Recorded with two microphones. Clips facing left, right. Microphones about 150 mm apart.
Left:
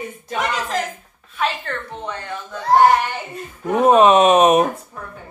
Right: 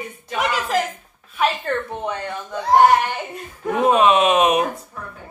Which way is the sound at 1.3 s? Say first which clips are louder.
Right 2 dB; centre (ahead or behind).